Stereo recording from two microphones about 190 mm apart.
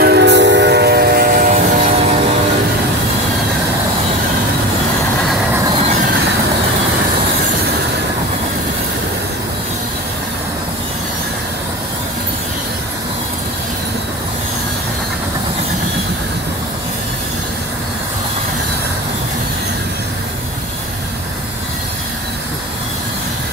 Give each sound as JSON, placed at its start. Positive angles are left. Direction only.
{"t": 0.0, "sound": "train", "side_deg": -65}